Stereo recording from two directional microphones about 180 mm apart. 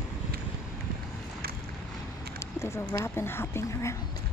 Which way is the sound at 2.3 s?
15° left (ahead or behind).